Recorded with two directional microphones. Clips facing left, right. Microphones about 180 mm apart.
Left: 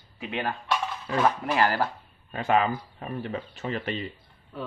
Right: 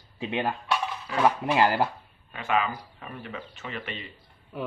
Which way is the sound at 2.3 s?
35° left (ahead or behind).